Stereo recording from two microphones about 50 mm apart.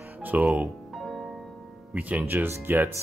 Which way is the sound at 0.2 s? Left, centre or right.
Right.